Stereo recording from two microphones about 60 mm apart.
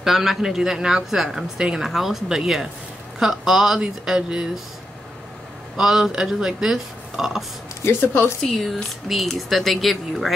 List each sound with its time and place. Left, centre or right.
0.0 s a woman's voice: centre
5.8 s speech: centre
7.8 s speech: left
9.1 s a woman's voice: centre